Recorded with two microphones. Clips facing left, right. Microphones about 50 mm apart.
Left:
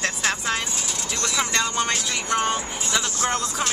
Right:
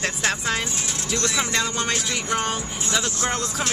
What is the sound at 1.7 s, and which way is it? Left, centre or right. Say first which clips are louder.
Speech: left 1 dB; centre.